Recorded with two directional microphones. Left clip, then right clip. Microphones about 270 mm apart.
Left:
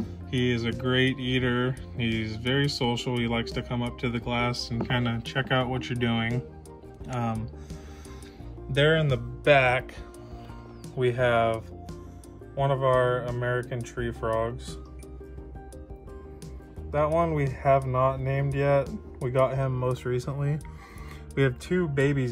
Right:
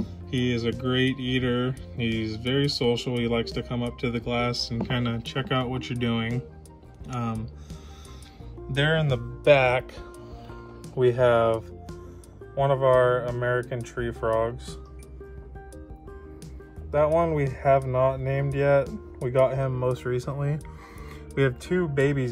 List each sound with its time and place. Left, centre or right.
0.0 s music: centre
0.8 s speech: centre
8.7 s speech: centre
11.0 s speech: right
12.5 s speech: centre
16.9 s speech: centre